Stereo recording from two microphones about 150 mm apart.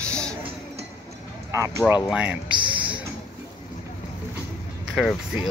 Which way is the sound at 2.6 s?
35° right (ahead or behind).